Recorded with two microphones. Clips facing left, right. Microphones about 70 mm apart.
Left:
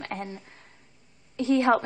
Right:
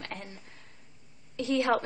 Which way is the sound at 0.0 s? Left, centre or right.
Left.